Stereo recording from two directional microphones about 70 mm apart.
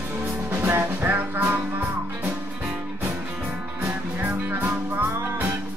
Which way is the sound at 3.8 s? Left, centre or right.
Right.